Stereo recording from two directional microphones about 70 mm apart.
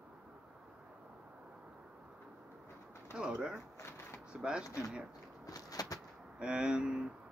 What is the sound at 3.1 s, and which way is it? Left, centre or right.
Bird, centre.